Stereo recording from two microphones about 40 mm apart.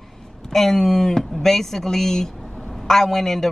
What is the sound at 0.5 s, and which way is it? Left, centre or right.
Speech, centre.